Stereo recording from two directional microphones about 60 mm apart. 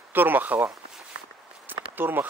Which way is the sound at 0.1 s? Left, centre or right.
Right.